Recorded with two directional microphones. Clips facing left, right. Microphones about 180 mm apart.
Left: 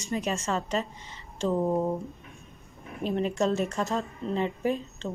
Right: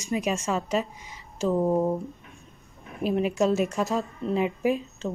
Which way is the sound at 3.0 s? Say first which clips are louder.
Right 3 dB; 10° right (ahead or behind).